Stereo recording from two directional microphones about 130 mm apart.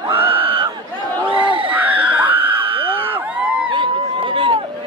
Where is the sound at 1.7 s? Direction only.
10° right (ahead or behind).